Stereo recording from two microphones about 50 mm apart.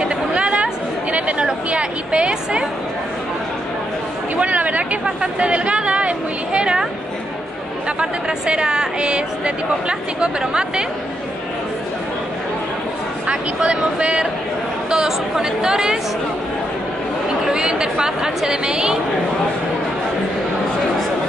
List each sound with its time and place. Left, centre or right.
0.0 s chatter: right
1.4 s speech: right
4.4 s a sound: right
5.2 s speech: right
8.0 s speech: centre
13.3 s speech: right
17.5 s a woman's voice: centre